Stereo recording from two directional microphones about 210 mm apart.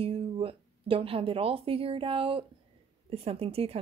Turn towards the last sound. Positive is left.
turn(degrees=-30)  # may be behind; listen again after turning